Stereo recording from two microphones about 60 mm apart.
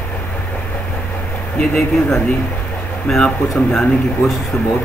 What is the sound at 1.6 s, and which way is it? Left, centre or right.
Speech, centre.